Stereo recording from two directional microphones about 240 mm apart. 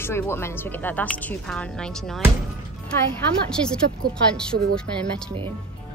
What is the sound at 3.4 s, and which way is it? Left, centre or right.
A woman's voice, centre.